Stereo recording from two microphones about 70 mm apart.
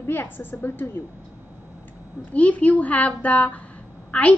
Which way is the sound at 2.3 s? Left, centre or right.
Centre.